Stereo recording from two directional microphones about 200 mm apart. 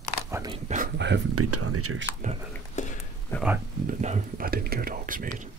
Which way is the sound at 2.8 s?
35° left (ahead or behind).